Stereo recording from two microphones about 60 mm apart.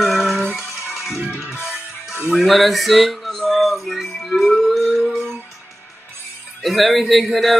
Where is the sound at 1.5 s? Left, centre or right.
Left.